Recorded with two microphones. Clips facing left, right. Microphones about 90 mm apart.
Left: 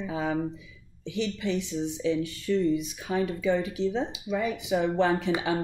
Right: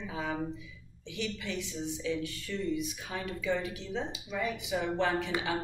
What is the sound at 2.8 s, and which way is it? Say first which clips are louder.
Speech: left 8 dB; 25° left (ahead or behind).